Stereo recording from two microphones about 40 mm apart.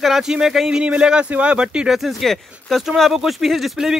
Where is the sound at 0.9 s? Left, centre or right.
Right.